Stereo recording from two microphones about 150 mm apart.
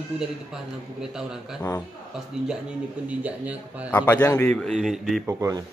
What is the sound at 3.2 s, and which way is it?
Speech, 10° right (ahead or behind).